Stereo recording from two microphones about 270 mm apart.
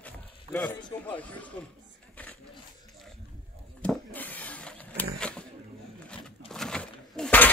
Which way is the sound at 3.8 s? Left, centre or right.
Centre.